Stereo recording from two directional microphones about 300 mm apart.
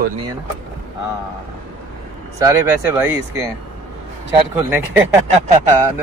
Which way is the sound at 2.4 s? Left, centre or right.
Centre.